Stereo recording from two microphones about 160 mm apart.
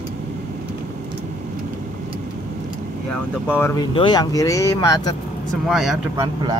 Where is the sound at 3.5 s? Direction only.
15° left (ahead or behind).